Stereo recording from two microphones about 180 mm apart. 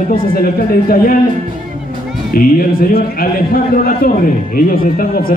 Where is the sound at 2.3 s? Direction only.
55° left (ahead or behind).